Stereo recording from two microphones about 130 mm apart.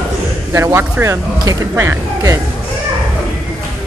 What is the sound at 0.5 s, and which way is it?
Speech, 20° right (ahead or behind).